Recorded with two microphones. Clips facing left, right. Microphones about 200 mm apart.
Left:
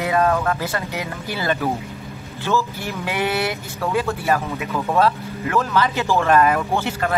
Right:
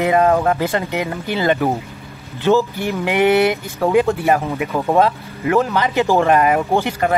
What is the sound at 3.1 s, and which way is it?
Speech, 20° right (ahead or behind).